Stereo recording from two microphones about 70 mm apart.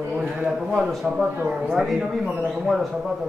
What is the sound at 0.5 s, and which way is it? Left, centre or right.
A man's voice, centre.